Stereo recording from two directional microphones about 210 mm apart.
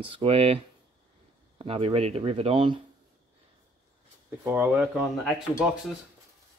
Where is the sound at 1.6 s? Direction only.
25° right (ahead or behind).